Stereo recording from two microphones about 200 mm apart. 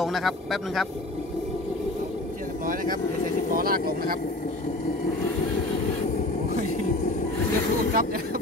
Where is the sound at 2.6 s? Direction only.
45° right (ahead or behind).